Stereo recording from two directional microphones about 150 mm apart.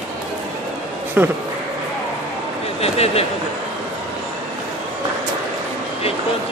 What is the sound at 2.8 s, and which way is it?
Speech, 45° left (ahead or behind).